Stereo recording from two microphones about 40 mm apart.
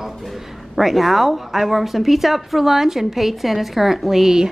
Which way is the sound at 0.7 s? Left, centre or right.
Centre.